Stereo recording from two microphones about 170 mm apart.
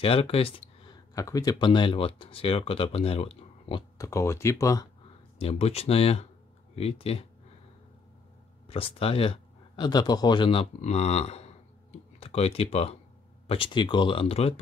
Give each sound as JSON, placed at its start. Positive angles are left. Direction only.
{"t": 0.0, "sound": "speech", "side_deg": 35}
{"t": 1.1, "sound": "speech", "side_deg": 20}
{"t": 4.0, "sound": "speech", "side_deg": 15}
{"t": 5.4, "sound": "speech", "side_deg": 35}
{"t": 8.6, "sound": "speech", "side_deg": 35}